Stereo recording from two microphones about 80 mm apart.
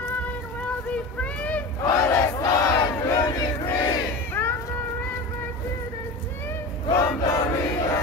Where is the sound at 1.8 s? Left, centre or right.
Left.